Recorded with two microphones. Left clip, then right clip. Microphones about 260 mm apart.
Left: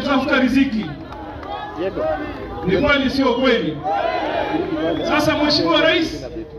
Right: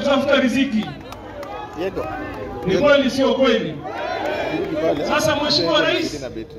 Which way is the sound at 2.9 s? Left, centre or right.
Centre.